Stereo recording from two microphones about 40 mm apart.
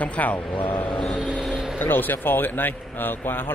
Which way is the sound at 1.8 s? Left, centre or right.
Left.